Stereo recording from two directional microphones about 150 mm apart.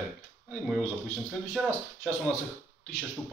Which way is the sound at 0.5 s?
5° left (ahead or behind).